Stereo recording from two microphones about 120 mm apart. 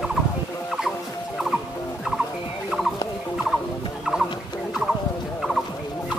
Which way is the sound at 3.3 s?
5° right (ahead or behind).